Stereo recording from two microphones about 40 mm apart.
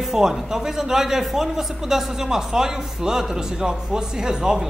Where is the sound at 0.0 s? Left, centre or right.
Centre.